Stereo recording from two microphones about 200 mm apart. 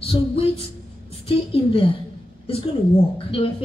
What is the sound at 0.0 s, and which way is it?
A woman's voice, 30° left (ahead or behind).